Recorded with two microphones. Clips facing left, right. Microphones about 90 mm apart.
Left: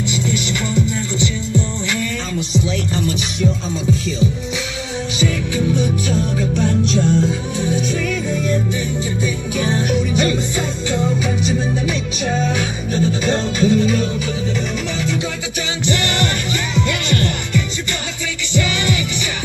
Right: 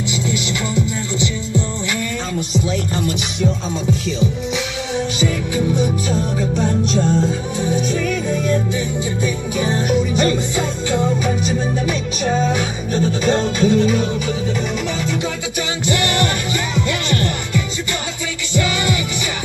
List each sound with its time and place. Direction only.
5.8 s music: 40° right (ahead or behind)
9.2 s music: 45° right (ahead or behind)
12.2 s music: 40° right (ahead or behind)
15.9 s music: 40° right (ahead or behind)
18.5 s music: 45° right (ahead or behind)